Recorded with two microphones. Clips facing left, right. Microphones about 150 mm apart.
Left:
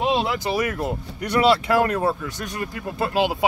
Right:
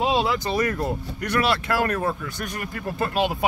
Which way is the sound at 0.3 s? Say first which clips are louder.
Even; 10° left (ahead or behind).